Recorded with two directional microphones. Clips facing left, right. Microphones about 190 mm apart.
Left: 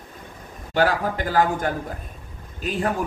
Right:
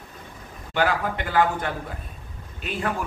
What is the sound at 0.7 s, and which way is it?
A man's voice, 40° left (ahead or behind).